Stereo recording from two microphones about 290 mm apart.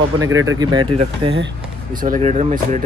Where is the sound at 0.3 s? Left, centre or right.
Right.